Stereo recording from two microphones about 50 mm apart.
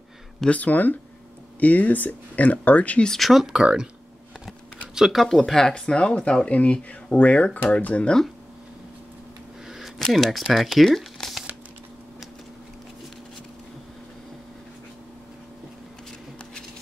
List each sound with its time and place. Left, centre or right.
0.5 s speech: left
3.1 s speech: centre
3.6 s speech: centre
5.1 s speech: centre; by 8.1 s left
9.9 s speech: centre